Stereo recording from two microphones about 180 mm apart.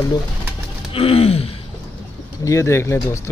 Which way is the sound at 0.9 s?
30° left (ahead or behind).